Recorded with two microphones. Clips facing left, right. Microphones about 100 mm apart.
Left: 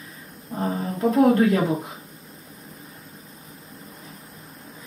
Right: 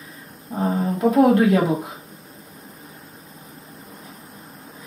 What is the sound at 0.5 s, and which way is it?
Speech, 10° right (ahead or behind).